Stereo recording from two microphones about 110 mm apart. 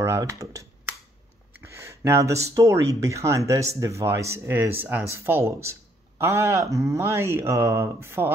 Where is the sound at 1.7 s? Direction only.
25° right (ahead or behind).